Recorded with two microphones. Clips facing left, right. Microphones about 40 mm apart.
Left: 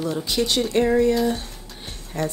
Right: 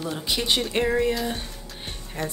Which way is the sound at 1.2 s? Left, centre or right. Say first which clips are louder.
Left 6 dB; centre.